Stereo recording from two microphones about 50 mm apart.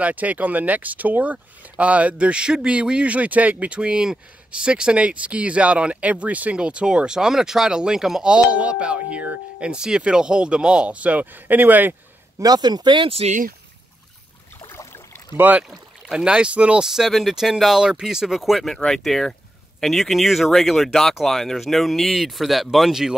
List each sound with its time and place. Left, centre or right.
0.0 s speech: right; by 8.3 s centre
8.5 s speech: right
12.4 s speech: right
15.3 s speech: right
16.1 s speech: centre
16.8 s speech: centre